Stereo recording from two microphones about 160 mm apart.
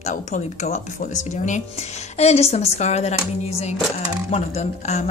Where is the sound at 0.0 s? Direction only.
45° left (ahead or behind).